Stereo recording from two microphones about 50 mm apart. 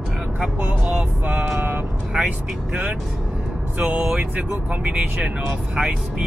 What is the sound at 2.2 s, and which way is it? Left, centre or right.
Speech, centre.